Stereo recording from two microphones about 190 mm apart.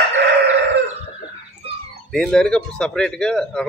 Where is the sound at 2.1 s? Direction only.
Centre (ahead or behind).